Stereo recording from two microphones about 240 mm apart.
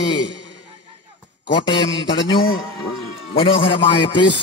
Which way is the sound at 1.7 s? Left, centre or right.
Left.